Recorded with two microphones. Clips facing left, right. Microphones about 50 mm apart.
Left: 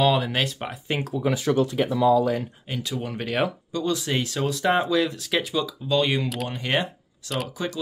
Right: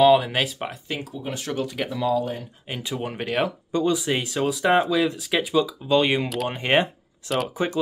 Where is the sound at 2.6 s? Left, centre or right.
Right.